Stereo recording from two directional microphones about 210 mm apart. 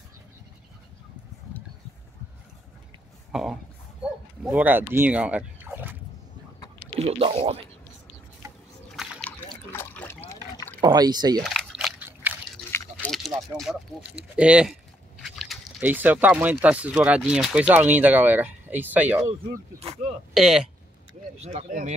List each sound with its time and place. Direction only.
3.3 s a sound: centre (ahead or behind)
4.0 s turkey: 5° right (ahead or behind)
7.0 s speech: 30° right (ahead or behind)
8.9 s liquid: 5° right (ahead or behind)
9.7 s water: 10° left (ahead or behind)
10.8 s speech: 20° right (ahead or behind)
11.4 s a sound: centre (ahead or behind)
12.7 s a sound: 5° left (ahead or behind)
15.2 s speech: centre (ahead or behind)
20.3 s speech: centre (ahead or behind)
21.1 s speech: 30° right (ahead or behind)